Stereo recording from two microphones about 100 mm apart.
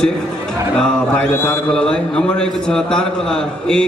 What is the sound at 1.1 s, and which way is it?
Speech, 20° left (ahead or behind).